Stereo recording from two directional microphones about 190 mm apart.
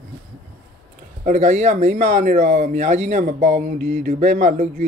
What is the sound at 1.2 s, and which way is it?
Speech, 40° right (ahead or behind).